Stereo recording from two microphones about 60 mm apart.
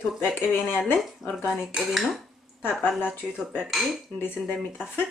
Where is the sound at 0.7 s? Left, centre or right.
Left.